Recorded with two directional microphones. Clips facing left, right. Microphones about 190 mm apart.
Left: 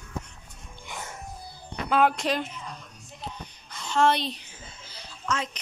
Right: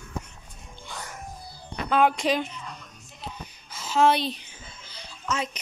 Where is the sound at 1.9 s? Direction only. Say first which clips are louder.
Right 1 dB; centre (ahead or behind).